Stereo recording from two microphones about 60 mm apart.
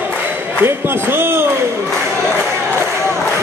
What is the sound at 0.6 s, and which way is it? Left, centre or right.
Speech, right.